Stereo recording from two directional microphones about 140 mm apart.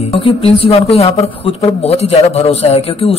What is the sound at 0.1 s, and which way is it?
Speech, 40° left (ahead or behind).